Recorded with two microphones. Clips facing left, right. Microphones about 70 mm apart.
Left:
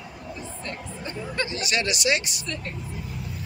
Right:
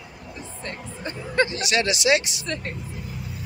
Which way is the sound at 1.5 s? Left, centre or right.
Right.